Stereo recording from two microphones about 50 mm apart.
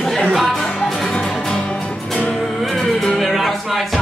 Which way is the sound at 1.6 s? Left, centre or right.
Left.